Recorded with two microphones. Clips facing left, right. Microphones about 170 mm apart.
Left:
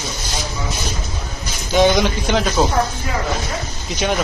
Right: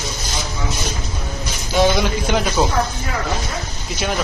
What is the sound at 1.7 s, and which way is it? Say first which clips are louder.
Speech: left 2 dB; centre (ahead or behind).